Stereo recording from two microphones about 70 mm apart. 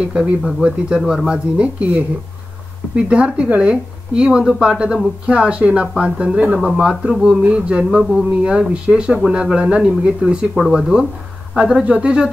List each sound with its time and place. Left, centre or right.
0.0 s speech: centre
3.1 s speech: centre
10.5 s speech: centre
11.5 s speech: centre